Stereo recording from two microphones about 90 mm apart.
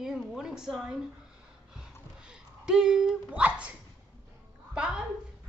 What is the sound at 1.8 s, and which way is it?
Dog, 10° right (ahead or behind).